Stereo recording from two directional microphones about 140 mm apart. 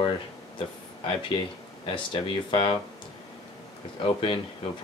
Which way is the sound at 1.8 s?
35° left (ahead or behind).